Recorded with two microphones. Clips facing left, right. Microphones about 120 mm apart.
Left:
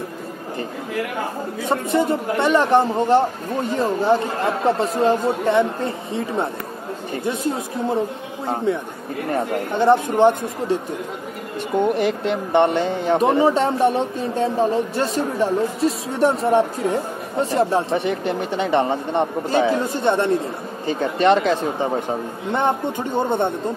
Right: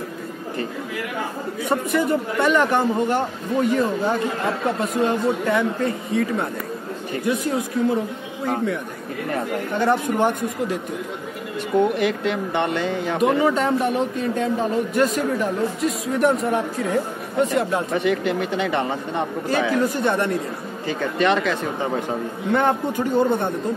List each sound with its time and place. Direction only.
1.7 s speech: 25° left (ahead or behind)
9.8 s speech: 25° left (ahead or behind)
12.0 s speech: 35° left (ahead or behind)